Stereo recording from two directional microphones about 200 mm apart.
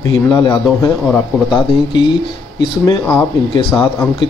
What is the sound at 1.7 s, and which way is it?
Speech, 25° left (ahead or behind).